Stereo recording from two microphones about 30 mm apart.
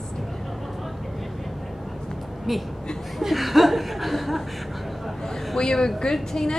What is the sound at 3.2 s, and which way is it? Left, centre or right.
Speech, centre.